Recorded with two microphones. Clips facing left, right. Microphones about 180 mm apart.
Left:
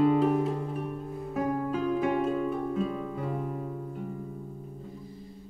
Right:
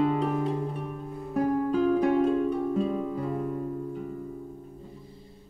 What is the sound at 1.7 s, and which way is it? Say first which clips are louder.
Music: right 5 dB; 35° right (ahead or behind).